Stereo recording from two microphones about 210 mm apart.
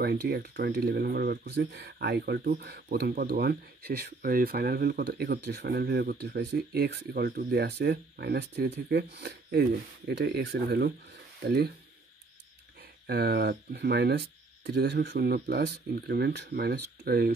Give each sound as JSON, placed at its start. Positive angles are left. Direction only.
{"t": 0.0, "sound": "speech", "side_deg": -50}
{"t": 13.0, "sound": "speech", "side_deg": -50}